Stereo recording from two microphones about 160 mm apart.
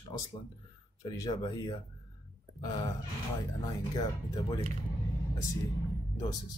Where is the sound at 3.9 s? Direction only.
20° left (ahead or behind).